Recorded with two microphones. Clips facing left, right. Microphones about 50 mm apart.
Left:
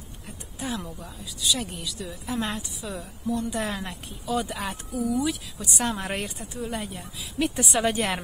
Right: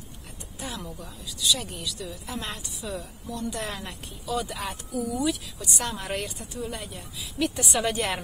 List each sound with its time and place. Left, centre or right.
0.6 s a woman's voice: centre
5.8 s a woman's voice: centre